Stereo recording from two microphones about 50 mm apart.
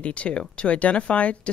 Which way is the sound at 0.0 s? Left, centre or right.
Left.